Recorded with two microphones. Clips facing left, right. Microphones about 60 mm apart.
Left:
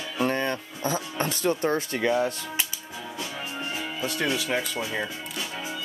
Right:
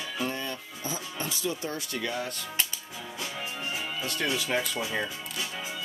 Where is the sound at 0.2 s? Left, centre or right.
Left.